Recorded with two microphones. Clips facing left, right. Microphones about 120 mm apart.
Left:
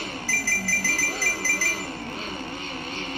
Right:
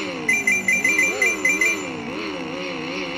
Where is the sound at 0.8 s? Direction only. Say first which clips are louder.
Right 6 dB; 55° right (ahead or behind).